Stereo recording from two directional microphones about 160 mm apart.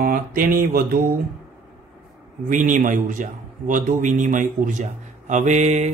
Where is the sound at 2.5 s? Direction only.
55° right (ahead or behind).